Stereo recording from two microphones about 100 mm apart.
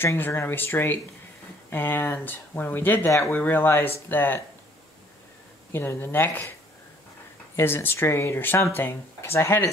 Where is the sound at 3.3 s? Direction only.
20° left (ahead or behind).